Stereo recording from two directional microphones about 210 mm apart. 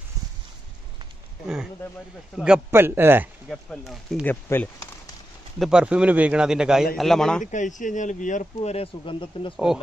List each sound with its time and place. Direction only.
2.3 s speech: 5° right (ahead or behind); by 5.1 s 15° left (ahead or behind)
5.6 s a man's voice: 5° right (ahead or behind)
7.5 s speech: 35° left (ahead or behind)